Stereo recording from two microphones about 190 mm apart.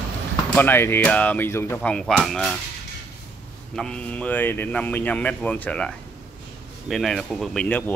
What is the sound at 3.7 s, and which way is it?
Speech, 5° left (ahead or behind).